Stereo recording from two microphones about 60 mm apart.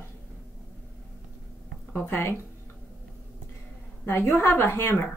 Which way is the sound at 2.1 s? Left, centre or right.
Left.